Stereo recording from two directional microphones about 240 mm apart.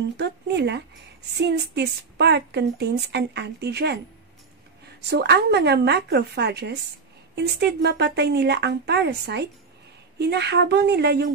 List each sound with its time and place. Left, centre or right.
0.2 s a woman's voice: right
5.1 s a woman's voice: right